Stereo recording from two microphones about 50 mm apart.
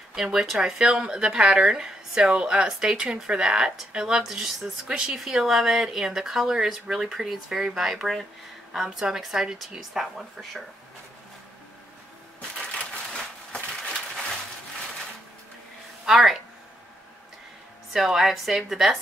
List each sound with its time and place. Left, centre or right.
0.1 s speech: centre
12.4 s crushing: left
16.1 s a sound: centre
17.9 s a woman's voice: centre